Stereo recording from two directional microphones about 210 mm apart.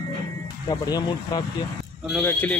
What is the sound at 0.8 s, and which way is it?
Speech, 20° left (ahead or behind).